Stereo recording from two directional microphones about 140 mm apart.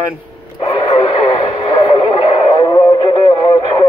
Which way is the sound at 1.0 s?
40° left (ahead or behind).